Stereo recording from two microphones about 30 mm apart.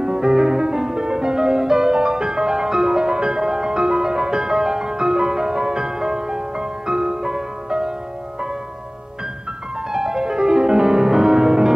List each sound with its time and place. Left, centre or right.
0.0 s music: centre
9.8 s music: right